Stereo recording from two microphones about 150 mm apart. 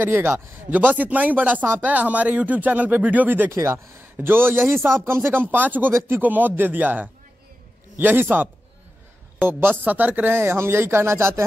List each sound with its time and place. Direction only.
0.0 s speech: 15° right (ahead or behind)